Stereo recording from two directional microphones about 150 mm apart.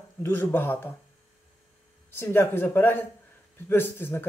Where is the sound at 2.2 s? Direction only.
15° left (ahead or behind).